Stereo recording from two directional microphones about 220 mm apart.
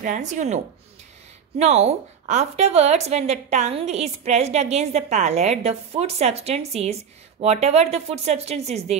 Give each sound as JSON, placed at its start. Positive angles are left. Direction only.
{"t": 0.0, "sound": "speech", "side_deg": -35}
{"t": 1.6, "sound": "a woman's voice", "side_deg": -30}